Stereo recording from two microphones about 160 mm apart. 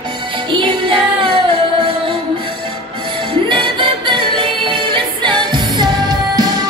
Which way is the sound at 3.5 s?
30° right (ahead or behind).